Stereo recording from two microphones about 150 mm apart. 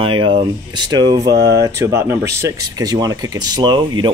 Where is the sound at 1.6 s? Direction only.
20° right (ahead or behind).